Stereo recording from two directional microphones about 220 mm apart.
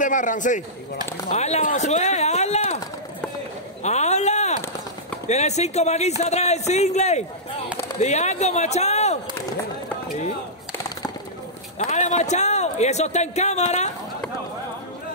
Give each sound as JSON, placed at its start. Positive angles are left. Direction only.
{"t": 0.0, "sound": "a man's voice", "side_deg": 35}
{"t": 3.8, "sound": "a man's voice", "side_deg": 30}
{"t": 11.8, "sound": "a man's voice", "side_deg": 30}